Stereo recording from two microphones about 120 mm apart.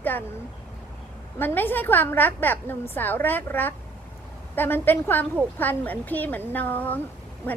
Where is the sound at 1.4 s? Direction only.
15° left (ahead or behind).